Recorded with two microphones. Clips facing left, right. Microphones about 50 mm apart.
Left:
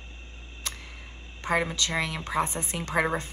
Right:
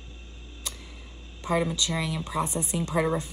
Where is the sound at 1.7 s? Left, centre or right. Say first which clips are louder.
Even; left.